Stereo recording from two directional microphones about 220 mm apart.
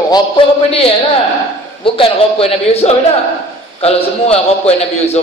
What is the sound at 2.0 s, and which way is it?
A woman's voice, 25° left (ahead or behind).